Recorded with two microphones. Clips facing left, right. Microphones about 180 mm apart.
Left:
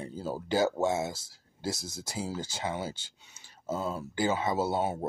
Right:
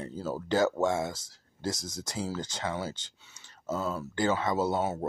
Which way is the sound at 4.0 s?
10° left (ahead or behind).